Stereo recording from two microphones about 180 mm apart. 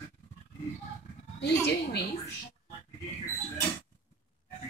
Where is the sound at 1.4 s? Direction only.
65° left (ahead or behind).